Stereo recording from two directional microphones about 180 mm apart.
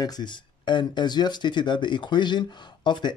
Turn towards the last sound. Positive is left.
turn(degrees=25)  # may be behind; listen again after turning